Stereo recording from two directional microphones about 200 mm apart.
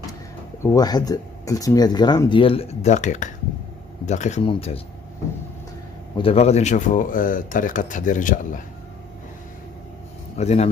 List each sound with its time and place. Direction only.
0.6 s speech: 20° left (ahead or behind)
6.1 s speech: 30° left (ahead or behind)
10.3 s speech: 35° left (ahead or behind)